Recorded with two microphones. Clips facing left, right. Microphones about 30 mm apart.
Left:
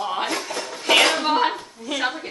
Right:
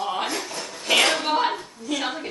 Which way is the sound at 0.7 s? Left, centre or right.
Left.